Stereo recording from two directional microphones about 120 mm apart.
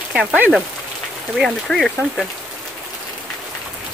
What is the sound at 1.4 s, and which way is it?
Speech, centre (ahead or behind).